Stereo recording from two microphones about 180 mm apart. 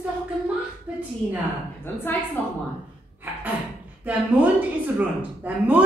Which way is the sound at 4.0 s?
10° right (ahead or behind).